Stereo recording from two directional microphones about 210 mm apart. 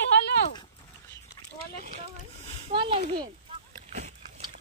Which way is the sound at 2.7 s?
25° right (ahead or behind).